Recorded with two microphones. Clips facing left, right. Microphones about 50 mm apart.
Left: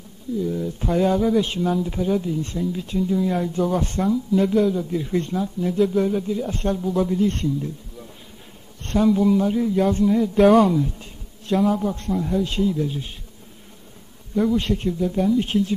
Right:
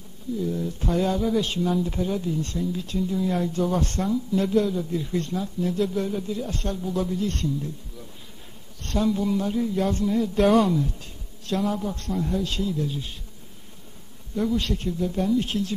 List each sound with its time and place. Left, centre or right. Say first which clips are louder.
0.4 s speech: left 3 dB; centre
1.4 s speech: left 2 dB; centre
1.7 s speech: left 3 dB; centre
2.1 s speech: left 3 dB; centre
3.0 s speech: left 4 dB; centre
5.0 s speech: left 4 dB; centre
6.8 s speech: left 4 dB; centre
7.1 s speech: left 6 dB; left
8.8 s speech: left 5 dB; centre
9.2 s speech: left 6 dB; centre
12.4 s speech: left 5 dB; centre
14.3 s speech: left 5 dB; centre
14.6 s speech: left 4 dB; left